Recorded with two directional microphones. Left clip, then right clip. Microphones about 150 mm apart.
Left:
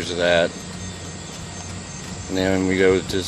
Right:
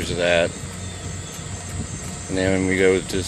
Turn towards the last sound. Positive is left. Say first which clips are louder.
# even
turn(degrees=-5)  # may be behind; listen again after turning